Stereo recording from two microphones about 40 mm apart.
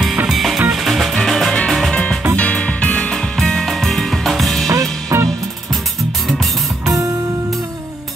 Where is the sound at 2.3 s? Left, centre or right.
Left.